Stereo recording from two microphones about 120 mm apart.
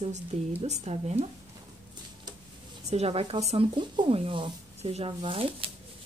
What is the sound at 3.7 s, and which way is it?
Speech, 45° right (ahead or behind).